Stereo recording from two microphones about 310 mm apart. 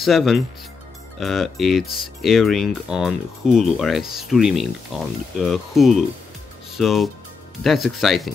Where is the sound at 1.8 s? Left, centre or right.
Left.